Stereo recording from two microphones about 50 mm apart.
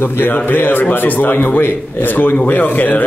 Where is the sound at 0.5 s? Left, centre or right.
Left.